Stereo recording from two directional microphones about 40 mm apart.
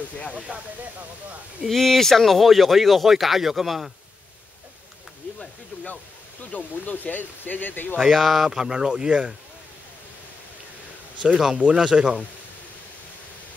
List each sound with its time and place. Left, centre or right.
0.5 s speech: right
1.7 s speech: centre
6.5 s speech: left
8.0 s speech: centre
8.5 s speech: centre
11.5 s speech: right